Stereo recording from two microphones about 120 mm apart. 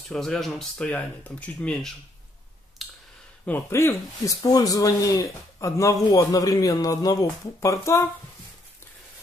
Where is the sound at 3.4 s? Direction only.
20° left (ahead or behind).